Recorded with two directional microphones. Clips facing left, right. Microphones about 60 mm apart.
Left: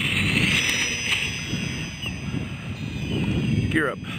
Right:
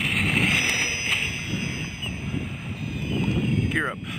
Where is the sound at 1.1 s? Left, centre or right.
Centre.